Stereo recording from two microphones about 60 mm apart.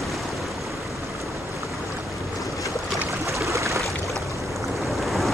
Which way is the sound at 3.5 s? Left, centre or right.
Right.